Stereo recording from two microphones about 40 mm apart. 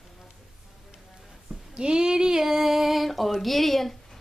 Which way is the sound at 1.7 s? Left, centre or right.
Right.